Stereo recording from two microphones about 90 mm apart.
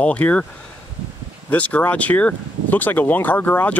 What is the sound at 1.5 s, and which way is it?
Speech, 15° left (ahead or behind).